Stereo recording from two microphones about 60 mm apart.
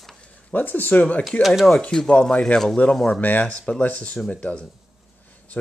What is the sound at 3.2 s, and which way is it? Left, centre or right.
Speech, left.